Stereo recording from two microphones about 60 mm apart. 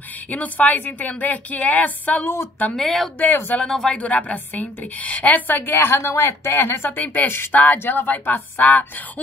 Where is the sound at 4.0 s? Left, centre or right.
Left.